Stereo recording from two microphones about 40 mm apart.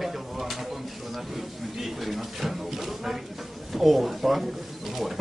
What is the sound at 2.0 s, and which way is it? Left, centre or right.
Speech, centre.